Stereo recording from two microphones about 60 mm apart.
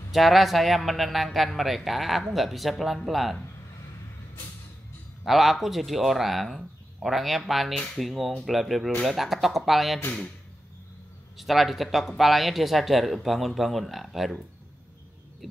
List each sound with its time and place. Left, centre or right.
0.1 s a man's voice: centre
5.2 s a man's voice: centre
11.3 s a man's voice: centre